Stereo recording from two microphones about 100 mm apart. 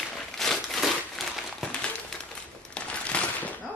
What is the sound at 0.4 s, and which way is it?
Crumpling, centre (ahead or behind).